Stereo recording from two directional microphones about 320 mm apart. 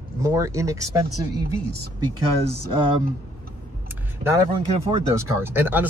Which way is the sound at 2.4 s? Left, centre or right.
Centre.